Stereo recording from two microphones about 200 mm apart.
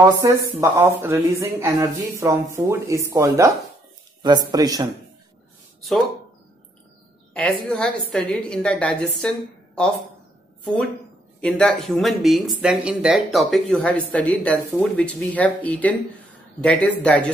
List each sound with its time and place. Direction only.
0.0 s speech: 15° right (ahead or behind)
5.8 s speech: centre (ahead or behind)
7.3 s speech: 5° left (ahead or behind)
10.6 s a woman's voice: 5° left (ahead or behind)